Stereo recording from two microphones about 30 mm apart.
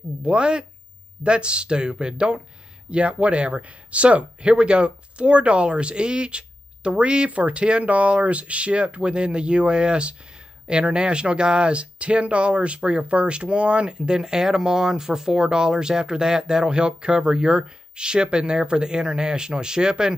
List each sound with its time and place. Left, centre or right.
0.2 s speech: right
7.2 s speech: right